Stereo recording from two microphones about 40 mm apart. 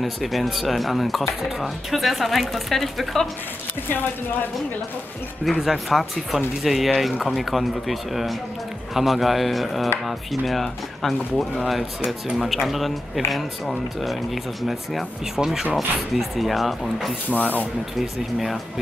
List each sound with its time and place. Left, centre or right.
0.0 s speech: centre
5.4 s speech: centre
15.3 s speech: centre
17.3 s speech: left
17.9 s speech: centre